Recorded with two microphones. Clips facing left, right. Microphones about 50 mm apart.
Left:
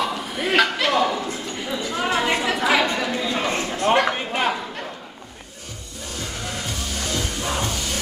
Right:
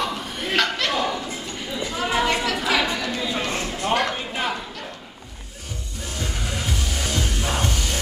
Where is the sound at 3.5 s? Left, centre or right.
Left.